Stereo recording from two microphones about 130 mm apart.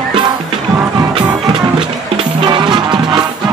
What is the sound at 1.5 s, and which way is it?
Music, 40° right (ahead or behind).